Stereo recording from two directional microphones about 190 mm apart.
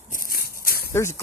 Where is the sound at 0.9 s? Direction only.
15° left (ahead or behind).